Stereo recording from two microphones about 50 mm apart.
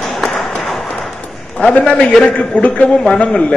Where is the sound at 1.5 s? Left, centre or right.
Left.